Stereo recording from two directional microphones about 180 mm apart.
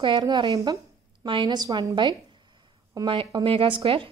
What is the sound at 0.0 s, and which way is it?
A woman's voice, 25° right (ahead or behind).